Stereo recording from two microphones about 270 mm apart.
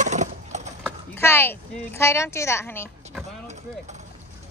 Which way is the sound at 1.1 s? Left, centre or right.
Centre.